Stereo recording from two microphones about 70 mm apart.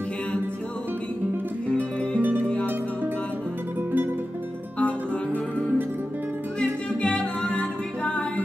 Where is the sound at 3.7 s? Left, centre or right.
Right.